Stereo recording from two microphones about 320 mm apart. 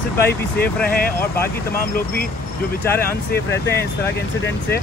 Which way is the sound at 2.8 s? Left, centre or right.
Centre.